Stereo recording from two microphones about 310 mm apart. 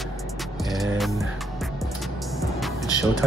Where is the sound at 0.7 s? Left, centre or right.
Centre.